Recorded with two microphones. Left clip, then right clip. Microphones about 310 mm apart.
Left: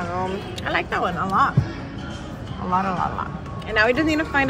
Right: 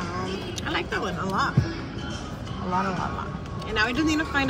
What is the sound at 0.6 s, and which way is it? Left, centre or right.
Speech, centre.